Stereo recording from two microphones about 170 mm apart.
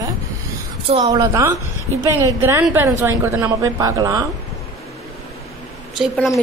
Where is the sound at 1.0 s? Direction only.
25° right (ahead or behind).